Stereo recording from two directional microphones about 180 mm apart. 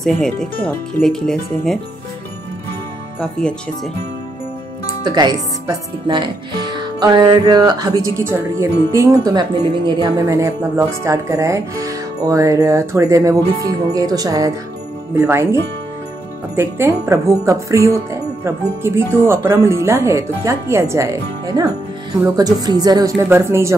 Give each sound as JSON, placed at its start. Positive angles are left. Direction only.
{"t": 0.0, "sound": "speech", "side_deg": 5}
{"t": 3.2, "sound": "speech", "side_deg": 5}
{"t": 5.0, "sound": "speech", "side_deg": -20}
{"t": 16.5, "sound": "speech", "side_deg": -15}